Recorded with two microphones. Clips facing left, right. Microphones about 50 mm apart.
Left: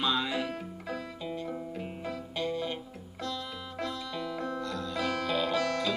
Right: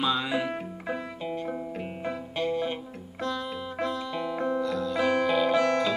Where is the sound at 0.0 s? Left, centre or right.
Centre.